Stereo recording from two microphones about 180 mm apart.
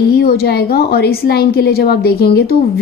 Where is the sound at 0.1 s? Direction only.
60° left (ahead or behind).